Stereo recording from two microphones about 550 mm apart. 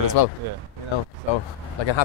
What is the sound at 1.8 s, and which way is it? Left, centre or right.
Speech, left.